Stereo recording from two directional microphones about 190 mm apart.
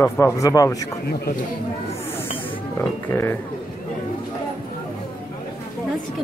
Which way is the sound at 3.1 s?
15° left (ahead or behind).